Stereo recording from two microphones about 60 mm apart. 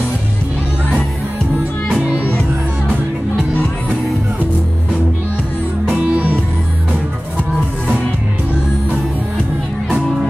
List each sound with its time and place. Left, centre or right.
5.9 s music: right